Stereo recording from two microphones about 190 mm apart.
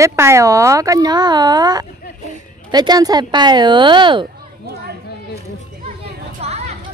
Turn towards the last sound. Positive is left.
turn(degrees=-35)  # may be behind; listen again after turning